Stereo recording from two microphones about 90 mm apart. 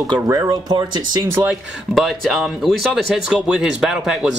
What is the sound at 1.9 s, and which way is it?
Speech, centre (ahead or behind).